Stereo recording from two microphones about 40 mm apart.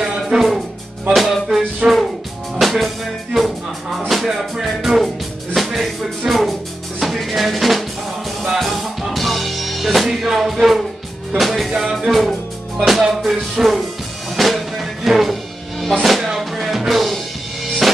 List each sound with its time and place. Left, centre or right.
0.2 s music: centre
1.8 s music: centre
2.6 s music: centre
3.3 s speech: centre
7.0 s drum: centre
8.4 s music: centre
11.3 s speech: centre
14.3 s music: centre